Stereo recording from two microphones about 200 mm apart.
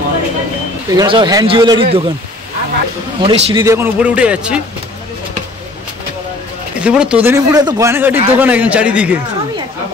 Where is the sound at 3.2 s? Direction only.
25° right (ahead or behind).